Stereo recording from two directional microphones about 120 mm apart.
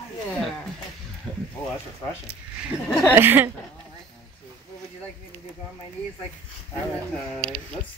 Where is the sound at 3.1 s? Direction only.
15° right (ahead or behind).